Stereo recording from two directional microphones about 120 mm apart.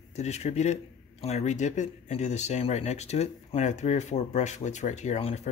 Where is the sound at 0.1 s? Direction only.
70° left (ahead or behind).